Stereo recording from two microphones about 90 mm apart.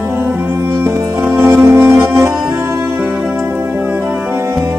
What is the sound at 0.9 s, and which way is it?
Music, 25° right (ahead or behind).